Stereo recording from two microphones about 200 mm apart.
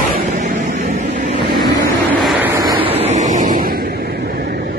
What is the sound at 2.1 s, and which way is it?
Vehicle, 5° right (ahead or behind).